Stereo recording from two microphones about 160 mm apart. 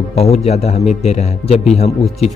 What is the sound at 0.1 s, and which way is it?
Speech, 40° left (ahead or behind).